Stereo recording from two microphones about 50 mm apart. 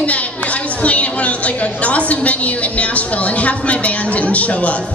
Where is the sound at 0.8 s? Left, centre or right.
Left.